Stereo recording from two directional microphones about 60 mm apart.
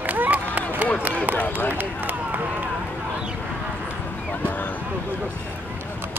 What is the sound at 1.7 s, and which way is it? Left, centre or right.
Run, right.